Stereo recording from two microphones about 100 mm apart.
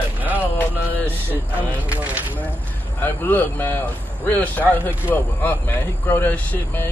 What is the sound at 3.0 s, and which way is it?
Speech, 20° left (ahead or behind).